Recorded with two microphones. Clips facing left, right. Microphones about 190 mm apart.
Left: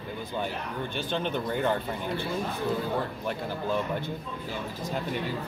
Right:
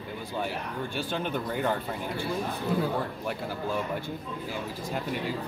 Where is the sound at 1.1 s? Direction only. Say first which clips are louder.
Left 4 dB; 5° right (ahead or behind).